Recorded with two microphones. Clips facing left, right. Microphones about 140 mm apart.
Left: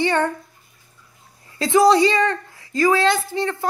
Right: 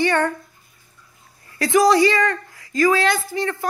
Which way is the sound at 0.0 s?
20° left (ahead or behind).